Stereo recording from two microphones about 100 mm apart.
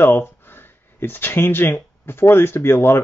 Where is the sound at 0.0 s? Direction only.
25° left (ahead or behind).